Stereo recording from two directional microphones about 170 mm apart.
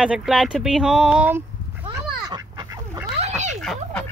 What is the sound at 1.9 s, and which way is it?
Duck, 20° right (ahead or behind).